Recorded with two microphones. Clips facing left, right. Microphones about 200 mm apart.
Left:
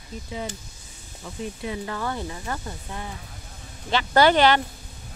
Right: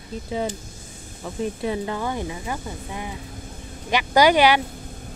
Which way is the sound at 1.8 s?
15° right (ahead or behind).